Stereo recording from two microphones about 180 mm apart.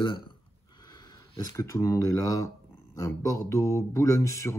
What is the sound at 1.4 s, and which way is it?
Speech, 20° left (ahead or behind).